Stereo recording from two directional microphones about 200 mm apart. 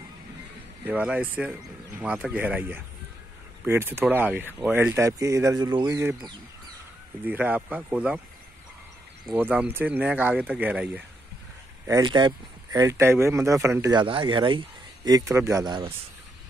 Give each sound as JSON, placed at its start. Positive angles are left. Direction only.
{"t": 0.8, "sound": "speech", "side_deg": -5}
{"t": 9.2, "sound": "speech", "side_deg": -5}
{"t": 11.8, "sound": "speech", "side_deg": -20}